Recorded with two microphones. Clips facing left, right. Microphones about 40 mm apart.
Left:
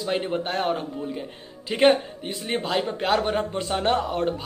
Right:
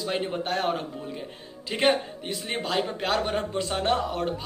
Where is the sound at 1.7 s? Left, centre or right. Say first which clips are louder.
Left 5 dB; centre.